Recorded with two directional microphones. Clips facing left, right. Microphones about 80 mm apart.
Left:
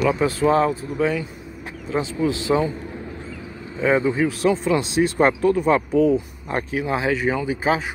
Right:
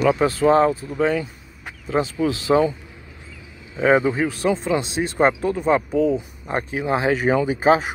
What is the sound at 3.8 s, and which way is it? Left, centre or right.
Speech, right.